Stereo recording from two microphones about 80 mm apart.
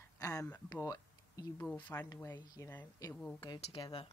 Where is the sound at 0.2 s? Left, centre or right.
Left.